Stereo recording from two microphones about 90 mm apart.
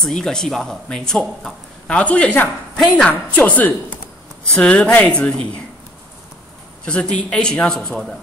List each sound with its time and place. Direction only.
0.0 s speech: 5° left (ahead or behind)
6.8 s speech: 10° left (ahead or behind)